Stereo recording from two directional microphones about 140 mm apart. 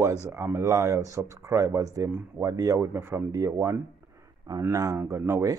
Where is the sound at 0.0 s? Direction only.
20° right (ahead or behind).